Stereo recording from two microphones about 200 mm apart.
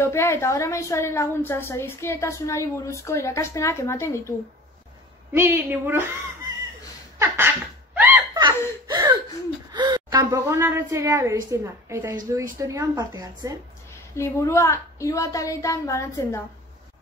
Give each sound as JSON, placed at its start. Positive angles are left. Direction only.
{"t": 0.0, "sound": "a woman's voice", "side_deg": 15}
{"t": 5.3, "sound": "a woman's voice", "side_deg": -10}
{"t": 7.2, "sound": "a sound", "side_deg": -10}
{"t": 8.8, "sound": "gasp", "side_deg": -20}
{"t": 9.7, "sound": "a woman's voice", "side_deg": -20}
{"t": 14.1, "sound": "a woman's voice", "side_deg": 15}